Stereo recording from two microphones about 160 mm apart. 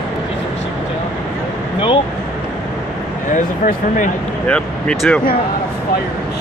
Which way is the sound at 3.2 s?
55° left (ahead or behind).